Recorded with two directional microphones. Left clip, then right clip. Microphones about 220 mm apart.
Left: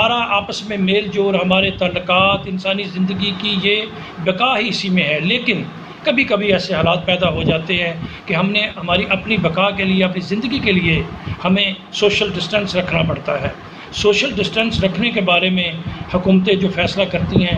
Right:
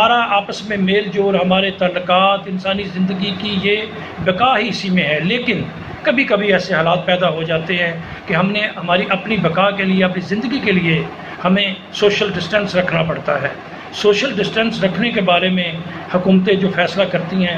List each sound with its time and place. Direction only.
0.0 s a man's voice: 20° left (ahead or behind)